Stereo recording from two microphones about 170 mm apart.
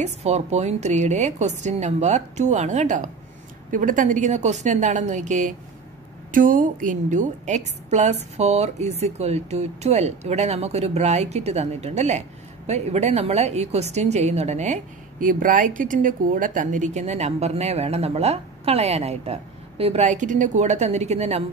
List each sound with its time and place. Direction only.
0.0 s a woman's voice: 40° right (ahead or behind)